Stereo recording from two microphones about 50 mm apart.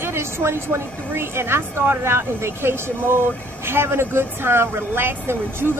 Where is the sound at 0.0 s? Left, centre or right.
Right.